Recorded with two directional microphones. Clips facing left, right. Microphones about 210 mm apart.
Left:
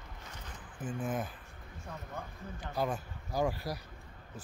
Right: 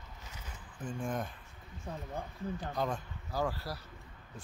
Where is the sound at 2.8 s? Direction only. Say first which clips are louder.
Left 4 dB; 10° left (ahead or behind).